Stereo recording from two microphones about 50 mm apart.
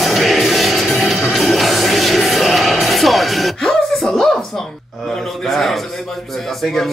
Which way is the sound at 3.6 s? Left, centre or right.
Centre.